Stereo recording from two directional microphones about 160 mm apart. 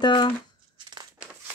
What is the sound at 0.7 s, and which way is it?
Crumpling, 25° right (ahead or behind).